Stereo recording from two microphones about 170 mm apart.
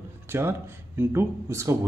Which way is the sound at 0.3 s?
15° right (ahead or behind).